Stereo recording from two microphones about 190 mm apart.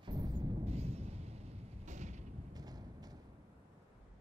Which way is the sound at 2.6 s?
20° right (ahead or behind).